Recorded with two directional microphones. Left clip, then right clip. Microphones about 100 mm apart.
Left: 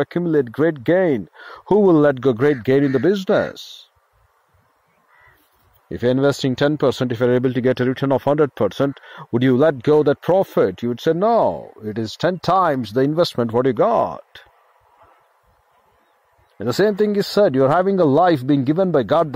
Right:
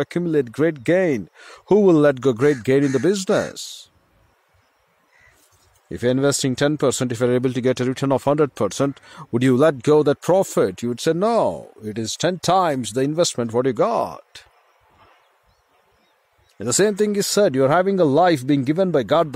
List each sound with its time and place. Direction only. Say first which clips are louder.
0.0 s speech: left 2 dB; 35° right (ahead or behind)
5.9 s speech: left 2 dB; 25° right (ahead or behind)
12.9 s speech: left 2 dB; 5° right (ahead or behind)
13.6 s speech: left 3 dB; 20° right (ahead or behind)
16.5 s speech: left 1 dB; 25° right (ahead or behind)